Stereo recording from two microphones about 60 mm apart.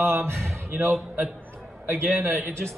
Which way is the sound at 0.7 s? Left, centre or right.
Right.